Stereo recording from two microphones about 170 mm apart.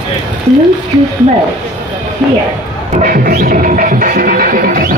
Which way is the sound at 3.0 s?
60° right (ahead or behind).